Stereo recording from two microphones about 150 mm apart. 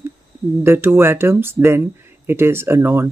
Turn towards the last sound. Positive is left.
turn(degrees=-15)  # may be behind; listen again after turning